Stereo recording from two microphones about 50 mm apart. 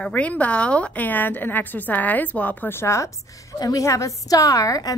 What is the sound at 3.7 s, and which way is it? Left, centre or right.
Speech, left.